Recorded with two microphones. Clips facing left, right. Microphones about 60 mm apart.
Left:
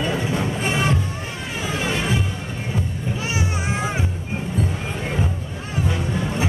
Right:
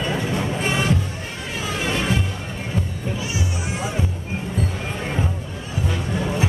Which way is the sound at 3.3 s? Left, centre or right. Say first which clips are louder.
Left 2 dB; left.